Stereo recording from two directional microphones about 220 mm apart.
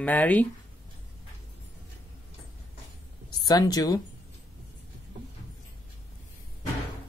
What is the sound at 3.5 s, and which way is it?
Speech, 15° left (ahead or behind).